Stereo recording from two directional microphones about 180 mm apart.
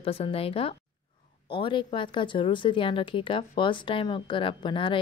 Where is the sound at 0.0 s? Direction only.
30° left (ahead or behind).